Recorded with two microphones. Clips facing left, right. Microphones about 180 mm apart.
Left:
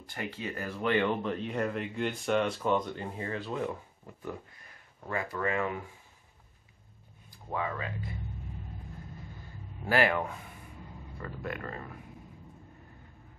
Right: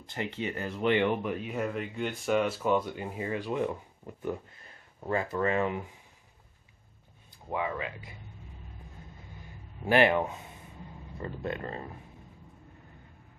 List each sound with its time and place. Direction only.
0.0 s speech: 20° right (ahead or behind)
5.0 s speech: 25° right (ahead or behind)
7.5 s speech: 20° right (ahead or behind)
9.8 s speech: 20° right (ahead or behind)